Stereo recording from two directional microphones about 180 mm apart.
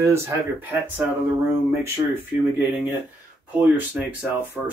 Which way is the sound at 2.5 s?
10° right (ahead or behind).